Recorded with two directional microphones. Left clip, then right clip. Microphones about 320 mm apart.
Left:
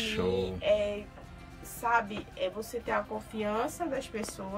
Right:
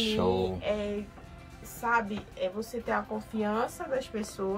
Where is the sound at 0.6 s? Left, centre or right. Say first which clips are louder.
Left 4 dB; centre.